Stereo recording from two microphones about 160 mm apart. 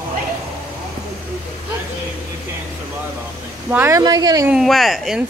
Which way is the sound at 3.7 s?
15° right (ahead or behind).